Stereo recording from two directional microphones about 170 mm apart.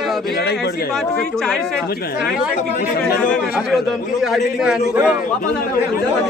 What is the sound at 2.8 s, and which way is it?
Speech, 65° left (ahead or behind).